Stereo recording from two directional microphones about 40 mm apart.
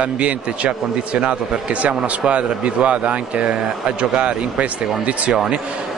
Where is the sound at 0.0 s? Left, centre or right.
Right.